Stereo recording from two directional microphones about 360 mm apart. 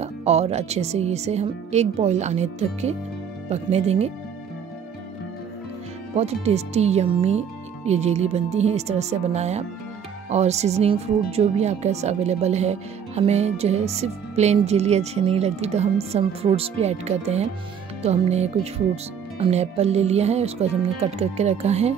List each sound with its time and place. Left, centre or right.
0.0 s speech: centre
6.1 s speech: centre